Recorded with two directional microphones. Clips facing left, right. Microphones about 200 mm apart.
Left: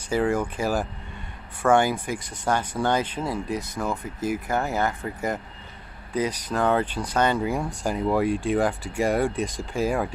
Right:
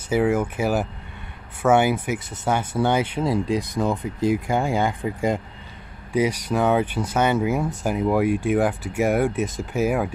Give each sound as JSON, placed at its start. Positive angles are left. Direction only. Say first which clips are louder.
{"t": 0.1, "sound": "speech", "louder": "right 3 dB", "side_deg": -5}
{"t": 8.3, "sound": "speech", "louder": "right 3 dB", "side_deg": -15}
{"t": 8.5, "sound": "speech", "louder": "right 2 dB", "side_deg": -5}